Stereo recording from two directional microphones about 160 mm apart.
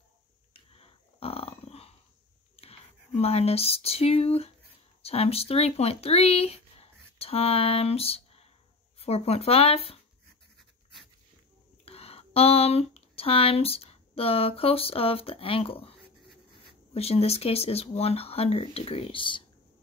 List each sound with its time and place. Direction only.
0.5 s burping: 35° left (ahead or behind)
2.6 s speech: 40° left (ahead or behind)
10.6 s pant: centre (ahead or behind)
11.8 s speech: 40° left (ahead or behind)